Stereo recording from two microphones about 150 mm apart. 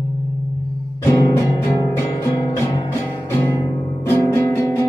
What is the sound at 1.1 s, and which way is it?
Music, 20° left (ahead or behind).